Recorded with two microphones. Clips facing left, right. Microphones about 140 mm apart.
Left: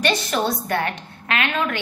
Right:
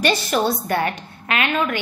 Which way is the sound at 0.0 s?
5° right (ahead or behind).